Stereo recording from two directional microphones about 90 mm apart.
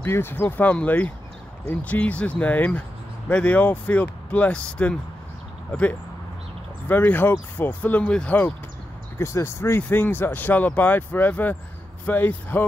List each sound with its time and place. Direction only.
0.0 s speech: 25° left (ahead or behind)
9.2 s speech: 30° left (ahead or behind)